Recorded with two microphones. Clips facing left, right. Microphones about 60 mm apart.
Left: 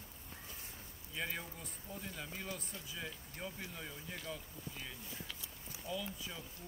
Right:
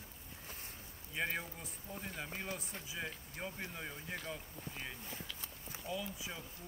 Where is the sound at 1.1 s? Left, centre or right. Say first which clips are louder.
Right 3 dB; right.